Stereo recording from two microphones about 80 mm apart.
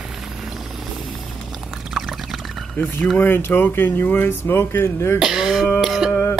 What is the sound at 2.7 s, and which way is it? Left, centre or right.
Speech, left.